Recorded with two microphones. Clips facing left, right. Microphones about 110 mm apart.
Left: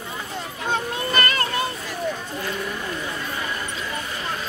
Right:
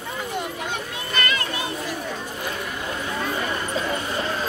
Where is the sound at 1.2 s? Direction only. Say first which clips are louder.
Left 1 dB; 45° left (ahead or behind).